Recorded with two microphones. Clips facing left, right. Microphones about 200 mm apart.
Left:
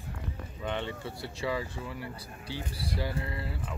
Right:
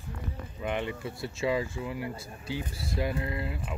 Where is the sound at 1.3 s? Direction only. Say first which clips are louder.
Right 4 dB; 20° right (ahead or behind).